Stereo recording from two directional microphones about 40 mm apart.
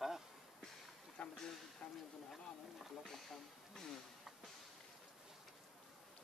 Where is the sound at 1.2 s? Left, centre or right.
Left.